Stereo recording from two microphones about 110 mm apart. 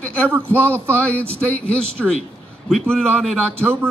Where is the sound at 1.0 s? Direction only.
15° left (ahead or behind).